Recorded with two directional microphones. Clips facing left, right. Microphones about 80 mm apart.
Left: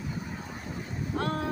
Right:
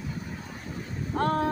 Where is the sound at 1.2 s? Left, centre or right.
Right.